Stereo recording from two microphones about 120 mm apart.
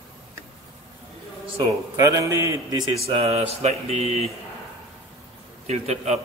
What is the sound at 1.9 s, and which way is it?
Speech, 25° right (ahead or behind).